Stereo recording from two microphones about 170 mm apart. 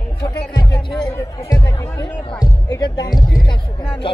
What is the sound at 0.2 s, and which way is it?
Music, 25° left (ahead or behind).